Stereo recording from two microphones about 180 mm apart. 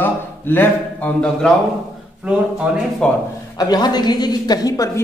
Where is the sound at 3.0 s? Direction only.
5° left (ahead or behind).